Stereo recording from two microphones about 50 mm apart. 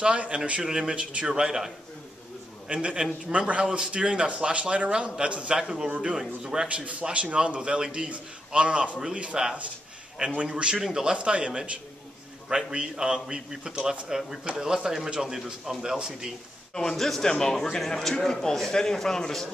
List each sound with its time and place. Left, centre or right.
0.0 s a man's voice: right
2.7 s a man's voice: centre
6.7 s a man's voice: right
16.7 s a man's voice: centre